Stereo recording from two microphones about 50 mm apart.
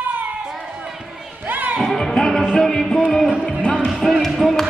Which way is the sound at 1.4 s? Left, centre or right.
Right.